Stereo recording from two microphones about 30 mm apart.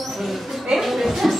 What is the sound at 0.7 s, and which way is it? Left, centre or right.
Speech, centre.